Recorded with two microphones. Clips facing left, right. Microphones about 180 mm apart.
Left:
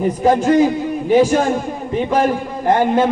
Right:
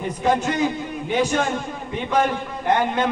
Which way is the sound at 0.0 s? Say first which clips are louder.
Left 7 dB; 35° left (ahead or behind).